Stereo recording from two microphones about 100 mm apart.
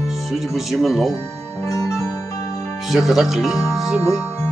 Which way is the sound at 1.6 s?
30° left (ahead or behind).